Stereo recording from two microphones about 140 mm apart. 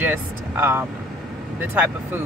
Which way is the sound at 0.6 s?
15° right (ahead or behind).